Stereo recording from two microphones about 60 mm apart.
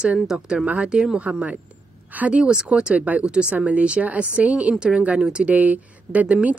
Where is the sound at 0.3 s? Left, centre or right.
Centre.